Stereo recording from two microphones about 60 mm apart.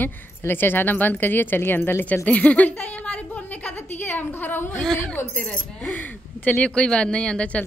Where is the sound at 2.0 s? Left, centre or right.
Left.